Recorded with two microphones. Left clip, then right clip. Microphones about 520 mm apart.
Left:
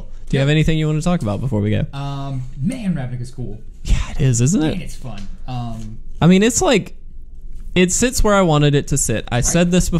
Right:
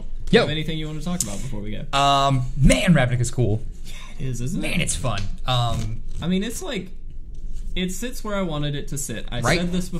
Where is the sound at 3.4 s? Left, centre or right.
Right.